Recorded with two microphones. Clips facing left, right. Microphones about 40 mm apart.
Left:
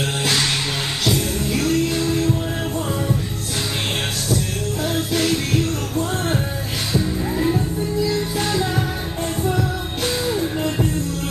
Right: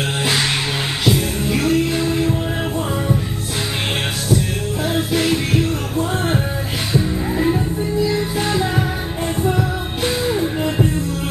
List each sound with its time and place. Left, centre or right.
0.2 s music: centre
4.8 s music: centre